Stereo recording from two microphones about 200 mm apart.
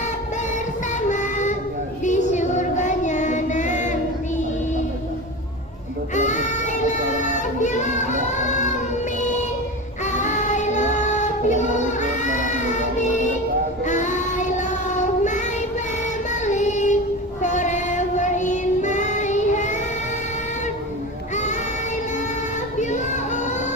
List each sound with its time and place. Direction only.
1.0 s child singing: 35° left (ahead or behind)
6.1 s child singing: 35° left (ahead or behind)
10.1 s child singing: 35° left (ahead or behind)
13.8 s child singing: 35° left (ahead or behind)
16.4 s child singing: 35° left (ahead or behind)
22.8 s child singing: 35° left (ahead or behind)